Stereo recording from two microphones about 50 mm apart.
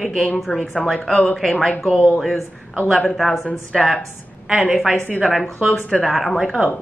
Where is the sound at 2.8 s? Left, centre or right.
Centre.